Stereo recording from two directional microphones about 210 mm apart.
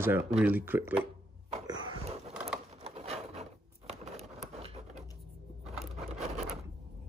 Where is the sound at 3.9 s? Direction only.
30° right (ahead or behind).